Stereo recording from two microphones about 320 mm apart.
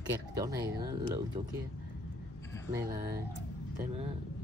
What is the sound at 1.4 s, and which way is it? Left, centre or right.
Speech, centre.